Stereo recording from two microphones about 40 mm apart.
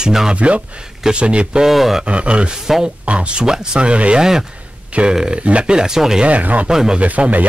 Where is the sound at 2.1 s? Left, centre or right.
Right.